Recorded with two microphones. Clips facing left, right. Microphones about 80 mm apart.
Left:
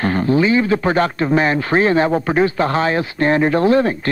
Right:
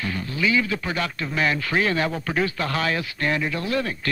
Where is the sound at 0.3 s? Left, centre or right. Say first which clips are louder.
Left 8 dB; left.